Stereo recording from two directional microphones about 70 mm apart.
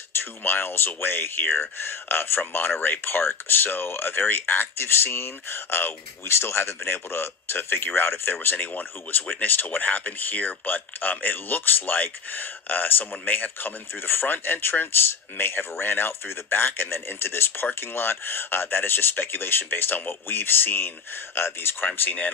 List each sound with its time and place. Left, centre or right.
0.2 s speech: left